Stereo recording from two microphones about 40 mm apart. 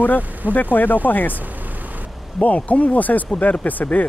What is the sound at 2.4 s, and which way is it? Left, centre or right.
Speech, left.